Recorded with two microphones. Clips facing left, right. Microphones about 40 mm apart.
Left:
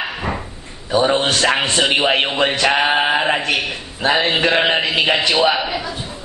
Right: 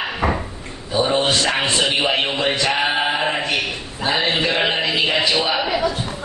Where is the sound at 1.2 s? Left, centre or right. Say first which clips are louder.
Left 2 dB; left.